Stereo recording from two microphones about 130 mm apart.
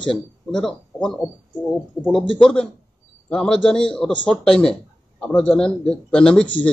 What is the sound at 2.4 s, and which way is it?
A man's voice, 5° left (ahead or behind).